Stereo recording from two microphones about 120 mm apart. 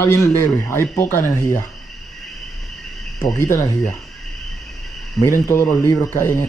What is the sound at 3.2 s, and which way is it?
Speech, 25° left (ahead or behind).